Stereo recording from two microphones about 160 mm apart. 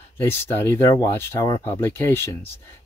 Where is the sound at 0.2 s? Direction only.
15° left (ahead or behind).